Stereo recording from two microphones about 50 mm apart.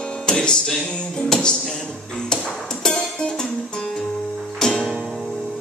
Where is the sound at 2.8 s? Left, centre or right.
Centre.